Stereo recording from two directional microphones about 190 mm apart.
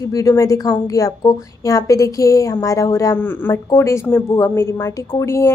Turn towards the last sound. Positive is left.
turn(degrees=15)  # may be behind; listen again after turning